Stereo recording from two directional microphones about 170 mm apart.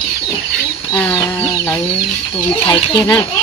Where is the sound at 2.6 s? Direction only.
25° left (ahead or behind).